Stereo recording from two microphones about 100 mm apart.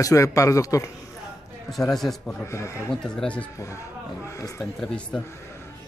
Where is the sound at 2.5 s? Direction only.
30° left (ahead or behind).